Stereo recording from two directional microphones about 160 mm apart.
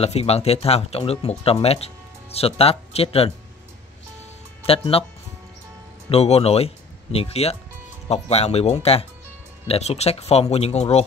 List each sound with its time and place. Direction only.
0.0 s speech: 40° left (ahead or behind)
4.6 s speech: 35° left (ahead or behind)
6.0 s speech: 40° left (ahead or behind)